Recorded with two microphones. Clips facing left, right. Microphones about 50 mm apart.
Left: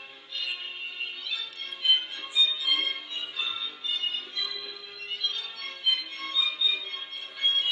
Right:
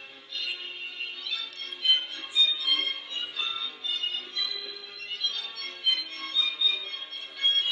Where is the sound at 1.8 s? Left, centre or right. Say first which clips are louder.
Left 1 dB; centre.